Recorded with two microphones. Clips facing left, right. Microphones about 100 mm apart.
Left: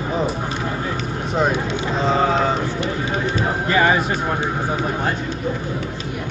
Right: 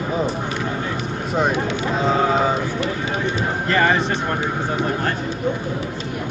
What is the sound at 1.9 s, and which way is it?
Speech, 5° right (ahead or behind).